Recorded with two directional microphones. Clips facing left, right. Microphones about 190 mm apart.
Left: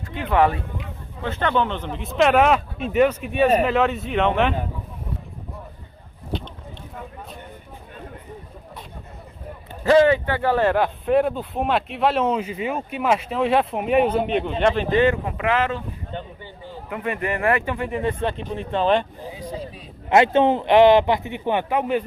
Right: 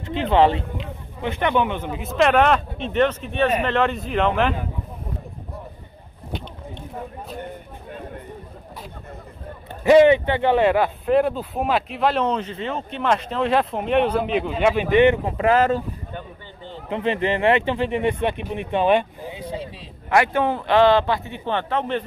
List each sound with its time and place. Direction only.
0.0 s a man's voice: 25° right (ahead or behind); by 4.6 s centre (ahead or behind)
9.8 s speech: 20° right (ahead or behind)
10.7 s a man's voice: 5° right (ahead or behind)
15.0 s speech: 20° right (ahead or behind)
15.3 s speech: 40° right (ahead or behind)
16.9 s speech: 25° right (ahead or behind)
19.3 s speech: 25° right (ahead or behind)
20.1 s a man's voice: 20° left (ahead or behind)